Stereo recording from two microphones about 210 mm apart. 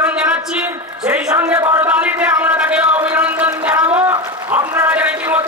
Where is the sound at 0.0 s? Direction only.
5° right (ahead or behind).